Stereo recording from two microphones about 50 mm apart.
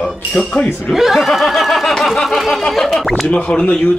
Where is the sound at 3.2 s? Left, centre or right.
Left.